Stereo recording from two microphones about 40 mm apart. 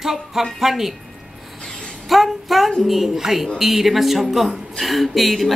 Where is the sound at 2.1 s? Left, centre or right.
Centre.